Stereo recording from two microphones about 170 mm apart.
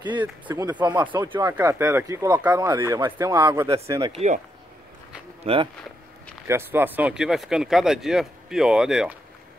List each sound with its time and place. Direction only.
0.0 s speech: 25° right (ahead or behind)
4.0 s speech: 35° right (ahead or behind)
5.4 s speech: 35° right (ahead or behind)
6.4 s speech: 15° right (ahead or behind)